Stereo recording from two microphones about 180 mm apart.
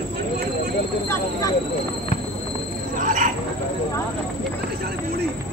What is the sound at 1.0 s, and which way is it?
Speech, 15° left (ahead or behind).